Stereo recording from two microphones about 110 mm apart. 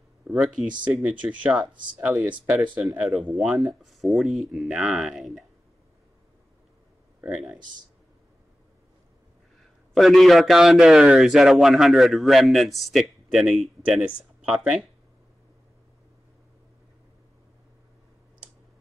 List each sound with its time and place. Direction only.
0.3 s a man's voice: 5° right (ahead or behind)
9.9 s a man's voice: centre (ahead or behind)